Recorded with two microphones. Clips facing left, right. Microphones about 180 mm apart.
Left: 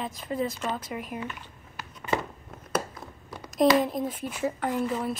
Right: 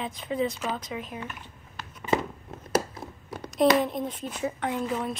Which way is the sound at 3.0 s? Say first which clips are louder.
Right 3 dB; 25° right (ahead or behind).